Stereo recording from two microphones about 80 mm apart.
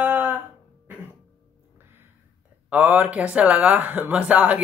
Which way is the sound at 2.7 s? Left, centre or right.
Centre.